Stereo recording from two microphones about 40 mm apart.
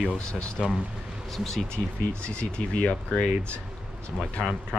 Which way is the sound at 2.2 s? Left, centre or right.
Left.